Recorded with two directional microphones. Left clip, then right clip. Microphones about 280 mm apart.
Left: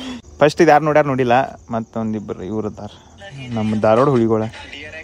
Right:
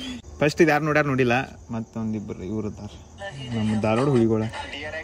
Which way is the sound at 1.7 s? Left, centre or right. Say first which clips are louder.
Left 9 dB; left.